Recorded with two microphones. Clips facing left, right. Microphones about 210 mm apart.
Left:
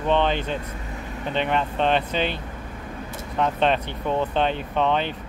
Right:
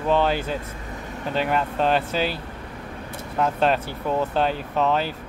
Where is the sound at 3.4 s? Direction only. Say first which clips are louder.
Even; 5° right (ahead or behind).